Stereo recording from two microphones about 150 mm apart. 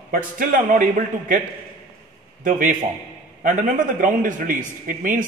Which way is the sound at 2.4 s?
60° right (ahead or behind).